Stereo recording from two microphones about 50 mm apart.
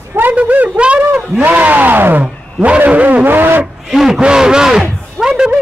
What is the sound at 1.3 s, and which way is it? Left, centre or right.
A man's voice, right.